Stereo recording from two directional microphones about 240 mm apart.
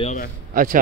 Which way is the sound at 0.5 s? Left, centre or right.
Right.